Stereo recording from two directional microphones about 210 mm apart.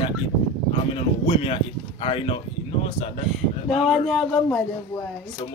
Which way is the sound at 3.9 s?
Centre (ahead or behind).